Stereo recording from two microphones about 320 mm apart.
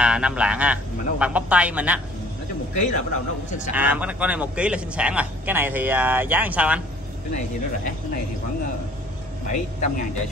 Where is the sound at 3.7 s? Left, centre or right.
Centre.